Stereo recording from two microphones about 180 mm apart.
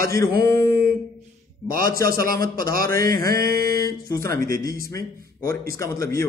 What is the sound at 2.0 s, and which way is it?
A man's voice, 55° right (ahead or behind).